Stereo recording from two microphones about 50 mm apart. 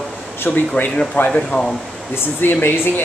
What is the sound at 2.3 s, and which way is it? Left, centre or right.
Speech, left.